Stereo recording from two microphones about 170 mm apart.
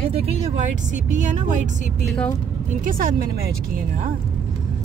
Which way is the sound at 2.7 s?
55° right (ahead or behind).